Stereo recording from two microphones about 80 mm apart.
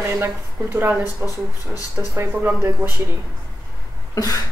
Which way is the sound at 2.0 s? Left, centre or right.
Right.